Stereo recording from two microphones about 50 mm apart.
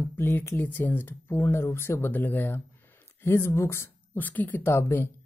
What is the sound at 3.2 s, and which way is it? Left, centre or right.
Speech, left.